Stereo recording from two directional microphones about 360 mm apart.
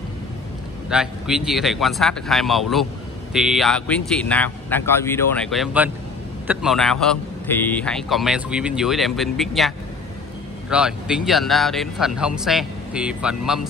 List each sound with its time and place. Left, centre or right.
0.8 s a man's voice: centre